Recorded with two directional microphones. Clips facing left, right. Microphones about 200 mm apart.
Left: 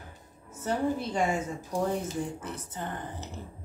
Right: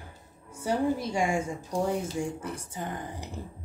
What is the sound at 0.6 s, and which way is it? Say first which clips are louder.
A woman's voice: right 2 dB; 10° right (ahead or behind).